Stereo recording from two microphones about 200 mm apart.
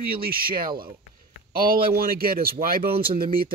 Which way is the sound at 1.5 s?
45° right (ahead or behind).